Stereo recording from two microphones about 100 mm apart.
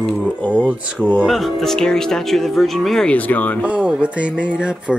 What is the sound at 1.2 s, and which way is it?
Speech, centre (ahead or behind).